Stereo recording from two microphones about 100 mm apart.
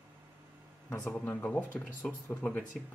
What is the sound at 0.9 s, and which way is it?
Speech, 20° left (ahead or behind).